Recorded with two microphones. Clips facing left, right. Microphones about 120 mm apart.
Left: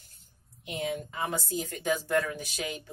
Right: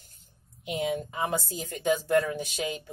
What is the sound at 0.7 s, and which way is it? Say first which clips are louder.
Speech: right 4 dB; 15° right (ahead or behind).